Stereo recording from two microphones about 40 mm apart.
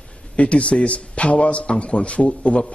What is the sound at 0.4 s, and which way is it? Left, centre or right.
A man's voice, left.